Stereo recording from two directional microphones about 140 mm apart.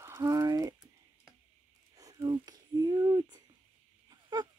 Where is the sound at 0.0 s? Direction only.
25° right (ahead or behind).